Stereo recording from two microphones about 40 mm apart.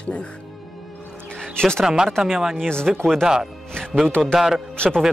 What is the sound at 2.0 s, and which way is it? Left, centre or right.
Speech, centre.